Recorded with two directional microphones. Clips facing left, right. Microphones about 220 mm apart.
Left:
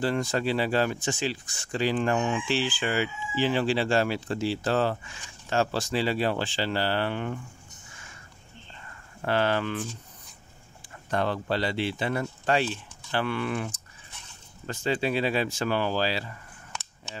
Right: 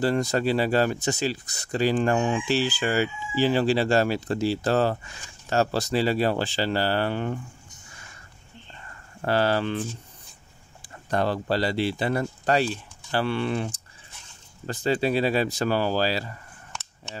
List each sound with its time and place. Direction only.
0.0 s speech: 40° right (ahead or behind)
9.2 s speech: 35° right (ahead or behind)